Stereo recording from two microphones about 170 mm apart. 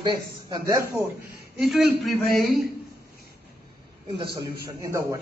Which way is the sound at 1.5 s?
Centre (ahead or behind).